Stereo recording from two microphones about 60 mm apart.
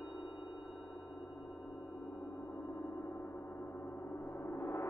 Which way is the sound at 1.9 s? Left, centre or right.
Left.